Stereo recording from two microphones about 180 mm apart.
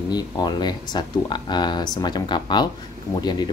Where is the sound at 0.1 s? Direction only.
25° left (ahead or behind).